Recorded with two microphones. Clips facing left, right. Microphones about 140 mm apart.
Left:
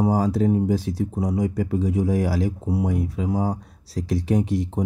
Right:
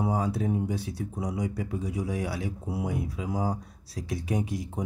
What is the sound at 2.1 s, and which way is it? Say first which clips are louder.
Speech: left 9 dB; 80° left.